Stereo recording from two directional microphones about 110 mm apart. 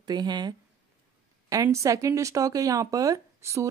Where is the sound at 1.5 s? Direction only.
30° right (ahead or behind).